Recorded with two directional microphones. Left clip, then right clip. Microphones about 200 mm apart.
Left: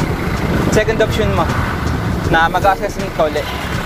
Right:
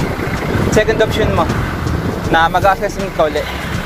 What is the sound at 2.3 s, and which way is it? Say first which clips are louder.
Speech: right 1 dB; 10° right (ahead or behind).